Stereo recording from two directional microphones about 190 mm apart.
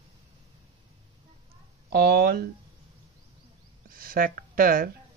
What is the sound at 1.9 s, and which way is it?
Speech, 55° right (ahead or behind).